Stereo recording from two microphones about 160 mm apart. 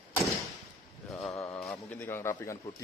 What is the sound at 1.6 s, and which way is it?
Speech, 10° left (ahead or behind).